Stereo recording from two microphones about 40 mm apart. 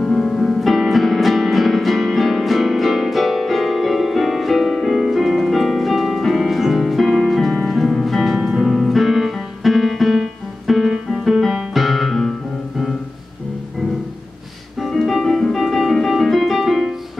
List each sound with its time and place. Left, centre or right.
0.0 s music: centre
0.6 s music: centre
14.9 s music: centre
15.6 s piano: centre